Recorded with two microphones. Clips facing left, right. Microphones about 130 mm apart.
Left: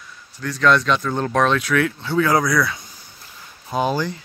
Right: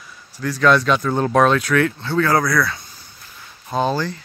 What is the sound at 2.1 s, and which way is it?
Speech, 15° left (ahead or behind).